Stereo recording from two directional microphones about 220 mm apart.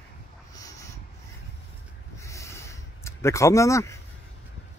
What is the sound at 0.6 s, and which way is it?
Dog, 15° left (ahead or behind).